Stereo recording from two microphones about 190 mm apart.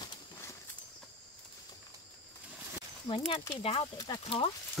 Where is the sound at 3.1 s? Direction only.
20° left (ahead or behind).